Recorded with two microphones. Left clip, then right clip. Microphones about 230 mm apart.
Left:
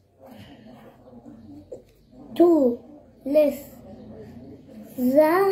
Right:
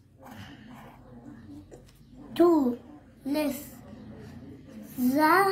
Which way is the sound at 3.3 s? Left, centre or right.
Right.